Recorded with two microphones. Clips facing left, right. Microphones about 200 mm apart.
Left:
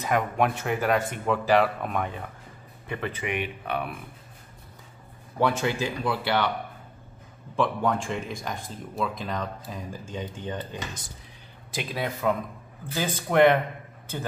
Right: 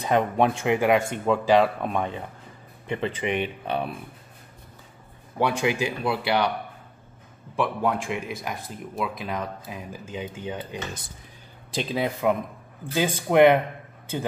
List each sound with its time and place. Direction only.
0.0 s speech: 25° right (ahead or behind)
5.4 s speech: 15° right (ahead or behind)
7.5 s speech: 5° right (ahead or behind)
11.7 s speech: 20° right (ahead or behind)